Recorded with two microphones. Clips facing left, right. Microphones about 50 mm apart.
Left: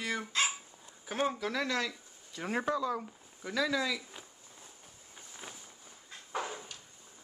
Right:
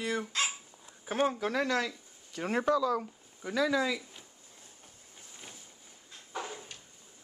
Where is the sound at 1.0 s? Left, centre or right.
Centre.